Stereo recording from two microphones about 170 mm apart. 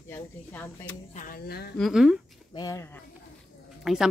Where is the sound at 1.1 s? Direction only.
55° left (ahead or behind); by 1.7 s 70° left (ahead or behind).